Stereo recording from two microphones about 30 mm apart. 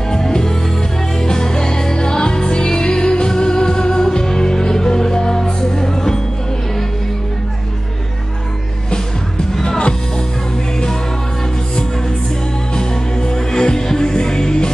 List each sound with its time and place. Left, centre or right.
0.1 s music: left
9.6 s music: left
12.7 s music: left